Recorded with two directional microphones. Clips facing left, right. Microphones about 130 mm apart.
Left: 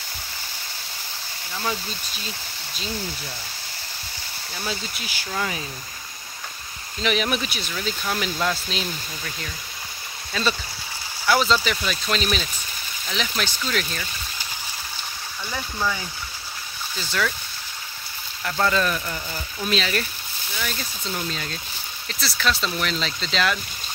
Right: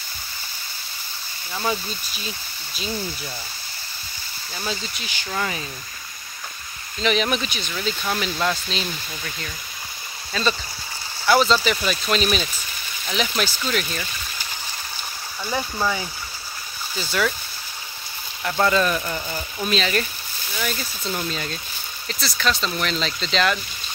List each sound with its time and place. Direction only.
4.6 s speech: 5° left (ahead or behind)
7.0 s speech: 5° left (ahead or behind)
15.5 s speech: 30° right (ahead or behind)
16.9 s speech: 10° right (ahead or behind)
18.4 s speech: 10° right (ahead or behind)
18.9 s speech: 20° right (ahead or behind)
19.7 s speech: centre (ahead or behind)